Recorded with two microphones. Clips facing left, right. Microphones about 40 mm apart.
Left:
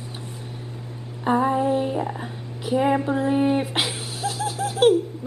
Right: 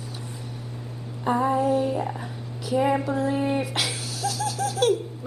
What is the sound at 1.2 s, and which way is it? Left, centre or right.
Female singing, left.